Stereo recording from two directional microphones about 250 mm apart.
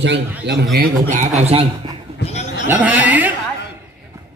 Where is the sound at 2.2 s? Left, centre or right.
Left.